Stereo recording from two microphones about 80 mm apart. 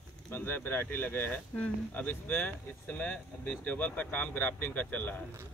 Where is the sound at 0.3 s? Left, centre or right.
Left.